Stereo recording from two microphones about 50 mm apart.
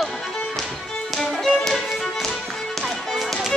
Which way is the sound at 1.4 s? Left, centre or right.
Centre.